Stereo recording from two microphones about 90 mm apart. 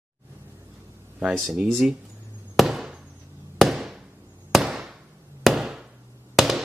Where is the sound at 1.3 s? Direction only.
Centre (ahead or behind).